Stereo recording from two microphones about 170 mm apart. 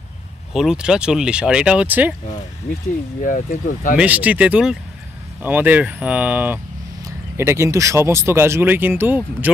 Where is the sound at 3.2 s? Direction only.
50° left (ahead or behind).